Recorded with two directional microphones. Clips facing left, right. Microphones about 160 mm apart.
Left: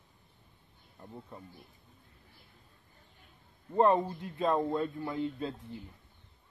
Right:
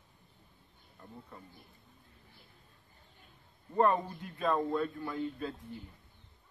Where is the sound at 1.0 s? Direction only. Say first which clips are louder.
Left 3 dB; 20° left (ahead or behind).